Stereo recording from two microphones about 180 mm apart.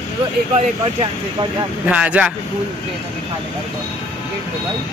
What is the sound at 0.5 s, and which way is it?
Speech, 35° right (ahead or behind).